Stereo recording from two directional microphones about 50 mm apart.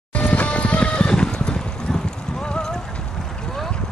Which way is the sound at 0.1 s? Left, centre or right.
Left.